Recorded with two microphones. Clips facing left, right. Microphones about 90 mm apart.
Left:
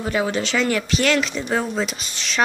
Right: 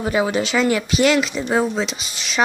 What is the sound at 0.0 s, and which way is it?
Speech, 15° right (ahead or behind).